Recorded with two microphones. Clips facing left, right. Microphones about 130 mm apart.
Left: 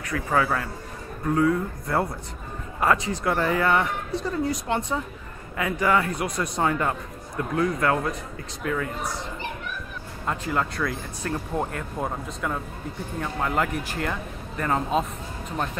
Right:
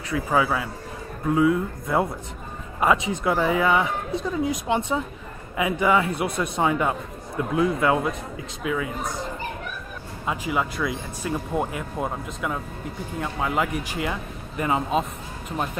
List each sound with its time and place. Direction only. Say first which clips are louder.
0.1 s speech: right 2 dB; 10° right (ahead or behind)
6.6 s speech: right 2 dB; 10° right (ahead or behind)
10.5 s speech: right 1 dB; 10° right (ahead or behind)